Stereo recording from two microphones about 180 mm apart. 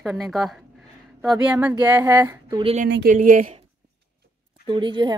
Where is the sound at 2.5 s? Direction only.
25° right (ahead or behind).